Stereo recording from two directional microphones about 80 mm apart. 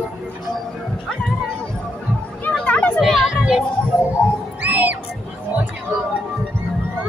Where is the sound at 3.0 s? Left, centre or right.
Centre.